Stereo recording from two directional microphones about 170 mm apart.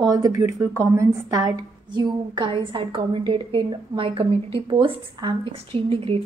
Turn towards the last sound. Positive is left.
turn(degrees=-30)  # may be behind; listen again after turning